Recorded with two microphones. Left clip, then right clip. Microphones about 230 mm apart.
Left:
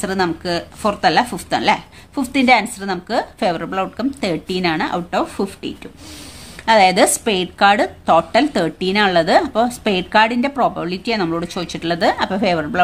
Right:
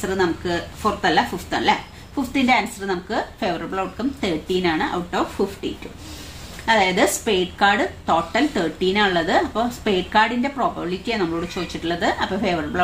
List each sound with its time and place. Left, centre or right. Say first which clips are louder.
0.0 s a woman's voice: left 2 dB; left
6.6 s a woman's voice: left 6 dB; left